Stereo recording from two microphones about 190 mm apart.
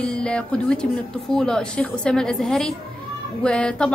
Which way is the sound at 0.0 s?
5° left (ahead or behind).